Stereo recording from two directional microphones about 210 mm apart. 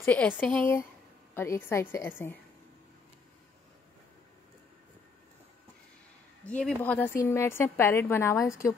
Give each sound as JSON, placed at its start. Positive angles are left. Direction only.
{"t": 0.0, "sound": "a woman's voice", "side_deg": 5}
{"t": 6.4, "sound": "a woman's voice", "side_deg": 5}